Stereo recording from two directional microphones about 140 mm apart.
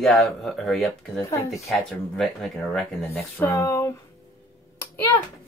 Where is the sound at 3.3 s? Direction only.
20° left (ahead or behind).